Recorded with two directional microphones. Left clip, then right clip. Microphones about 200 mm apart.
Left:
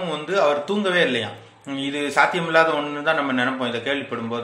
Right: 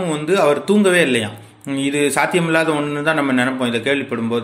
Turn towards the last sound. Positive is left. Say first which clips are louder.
# right 6 dB
turn(degrees=-35)  # may be behind; listen again after turning